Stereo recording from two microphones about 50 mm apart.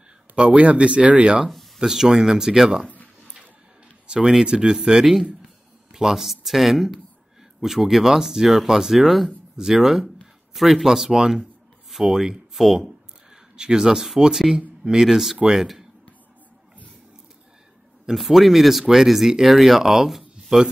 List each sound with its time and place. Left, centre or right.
0.4 s speech: right
4.1 s speech: centre
18.1 s speech: centre